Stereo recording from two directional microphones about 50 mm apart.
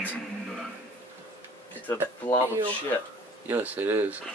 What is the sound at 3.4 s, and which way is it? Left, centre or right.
Speech, right.